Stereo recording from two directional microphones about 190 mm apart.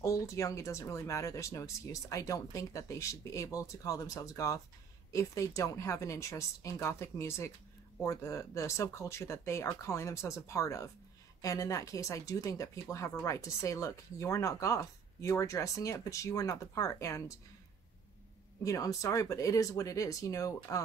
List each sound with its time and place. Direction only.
0.0 s speech: 15° left (ahead or behind)
18.6 s speech: 15° left (ahead or behind)